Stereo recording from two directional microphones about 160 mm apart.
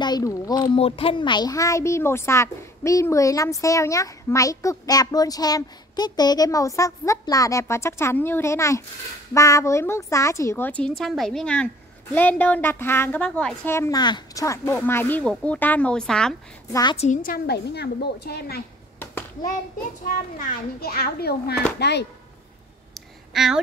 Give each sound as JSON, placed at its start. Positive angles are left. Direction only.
{"t": 0.0, "sound": "speech", "side_deg": 25}
{"t": 0.7, "sound": "a woman's voice", "side_deg": 35}
{"t": 16.9, "sound": "a woman's voice", "side_deg": 40}
{"t": 17.2, "sound": "a woman's voice", "side_deg": 75}
{"t": 20.3, "sound": "a child's voice", "side_deg": 65}
{"t": 21.7, "sound": "speech", "side_deg": 90}
{"t": 22.9, "sound": "a sound", "side_deg": 0}